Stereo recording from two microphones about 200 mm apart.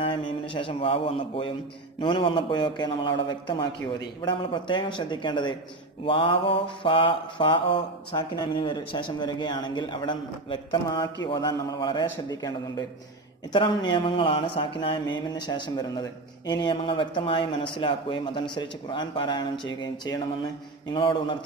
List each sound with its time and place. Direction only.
0.0 s speech: 25° left (ahead or behind)
2.0 s mantra: 25° left (ahead or behind)